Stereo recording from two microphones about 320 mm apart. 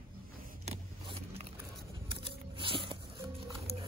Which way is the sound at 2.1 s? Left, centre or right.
Centre.